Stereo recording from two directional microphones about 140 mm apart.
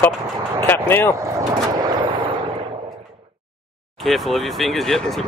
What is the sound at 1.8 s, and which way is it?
Vehicle, 35° right (ahead or behind).